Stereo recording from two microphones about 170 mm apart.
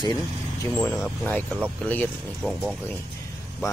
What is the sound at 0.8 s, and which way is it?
Speech, 15° left (ahead or behind).